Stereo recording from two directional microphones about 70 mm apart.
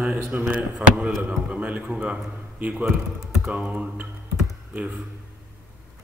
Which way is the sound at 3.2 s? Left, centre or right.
Centre.